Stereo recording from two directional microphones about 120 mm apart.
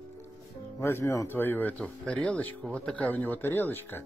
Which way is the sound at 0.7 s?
20° left (ahead or behind).